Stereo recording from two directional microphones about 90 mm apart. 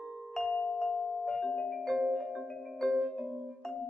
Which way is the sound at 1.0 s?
5° left (ahead or behind).